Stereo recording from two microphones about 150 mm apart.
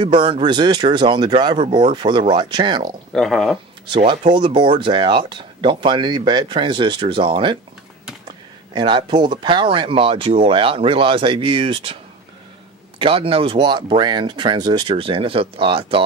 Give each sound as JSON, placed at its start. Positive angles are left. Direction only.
{"t": 0.0, "sound": "speech", "side_deg": -35}
{"t": 3.1, "sound": "speech", "side_deg": 0}
{"t": 3.8, "sound": "speech", "side_deg": -35}
{"t": 13.0, "sound": "speech", "side_deg": -35}